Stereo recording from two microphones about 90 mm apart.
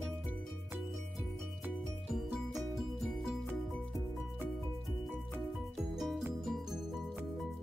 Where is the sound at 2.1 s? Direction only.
Centre (ahead or behind).